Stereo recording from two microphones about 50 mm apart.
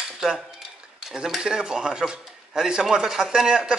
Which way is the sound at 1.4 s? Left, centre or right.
Centre.